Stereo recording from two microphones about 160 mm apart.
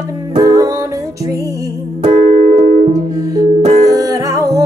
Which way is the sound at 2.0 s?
40° right (ahead or behind).